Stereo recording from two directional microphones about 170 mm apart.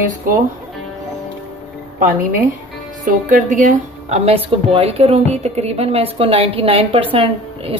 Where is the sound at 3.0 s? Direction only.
50° right (ahead or behind); by 7.7 s 30° right (ahead or behind).